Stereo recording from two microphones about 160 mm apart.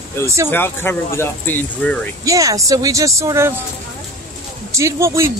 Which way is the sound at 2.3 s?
20° right (ahead or behind).